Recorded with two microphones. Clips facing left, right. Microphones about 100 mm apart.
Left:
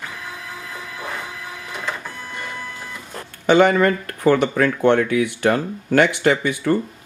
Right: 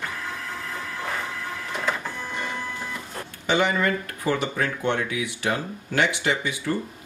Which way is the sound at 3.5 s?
55° left (ahead or behind).